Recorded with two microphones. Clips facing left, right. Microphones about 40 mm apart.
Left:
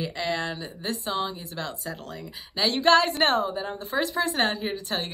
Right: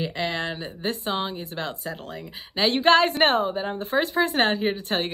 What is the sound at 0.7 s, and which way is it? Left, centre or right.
Speech, right.